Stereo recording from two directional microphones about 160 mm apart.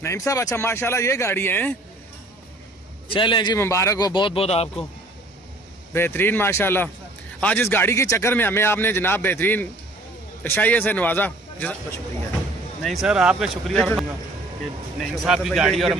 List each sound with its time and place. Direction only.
0.0 s a man's voice: 20° left (ahead or behind)
3.1 s a man's voice: 30° left (ahead or behind)
3.5 s speech: 15° left (ahead or behind); by 4.6 s 40° left (ahead or behind)
5.9 s a man's voice: 15° left (ahead or behind)
12.8 s speech: centre (ahead or behind)